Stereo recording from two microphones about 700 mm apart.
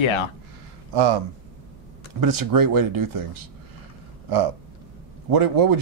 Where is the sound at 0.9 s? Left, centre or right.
Right.